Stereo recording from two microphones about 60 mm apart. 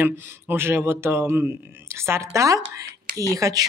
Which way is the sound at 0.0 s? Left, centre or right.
Right.